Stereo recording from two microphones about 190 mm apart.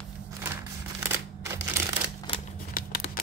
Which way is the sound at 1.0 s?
15° right (ahead or behind).